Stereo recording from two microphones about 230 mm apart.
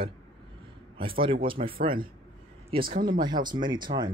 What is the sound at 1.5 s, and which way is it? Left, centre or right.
Speech, right.